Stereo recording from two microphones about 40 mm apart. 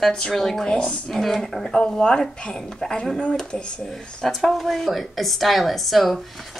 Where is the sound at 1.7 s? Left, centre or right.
Left.